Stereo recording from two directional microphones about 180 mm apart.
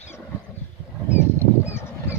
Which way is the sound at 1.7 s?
15° left (ahead or behind).